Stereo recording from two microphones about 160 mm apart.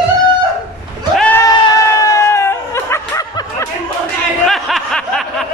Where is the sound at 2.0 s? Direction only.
20° left (ahead or behind).